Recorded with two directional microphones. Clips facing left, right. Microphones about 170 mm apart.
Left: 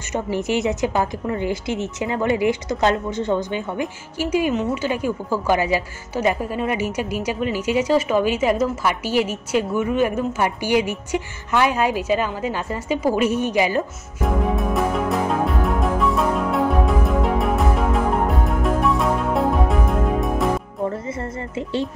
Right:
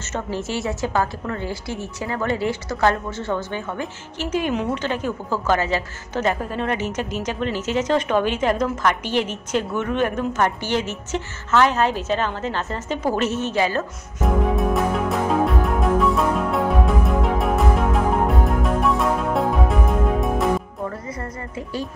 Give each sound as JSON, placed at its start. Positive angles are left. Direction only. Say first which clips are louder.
{"t": 0.1, "sound": "a woman's voice", "louder": "left 4 dB", "side_deg": 15}
{"t": 14.2, "sound": "music", "louder": "right 1 dB", "side_deg": 0}
{"t": 20.8, "sound": "a woman's voice", "louder": "left 4 dB", "side_deg": 25}